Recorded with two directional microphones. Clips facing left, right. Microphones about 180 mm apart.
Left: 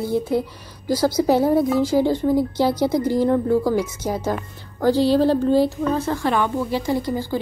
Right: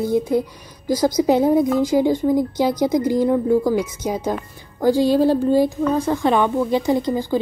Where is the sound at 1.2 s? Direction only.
20° right (ahead or behind).